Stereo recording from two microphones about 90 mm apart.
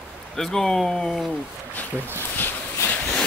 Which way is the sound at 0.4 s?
5° left (ahead or behind).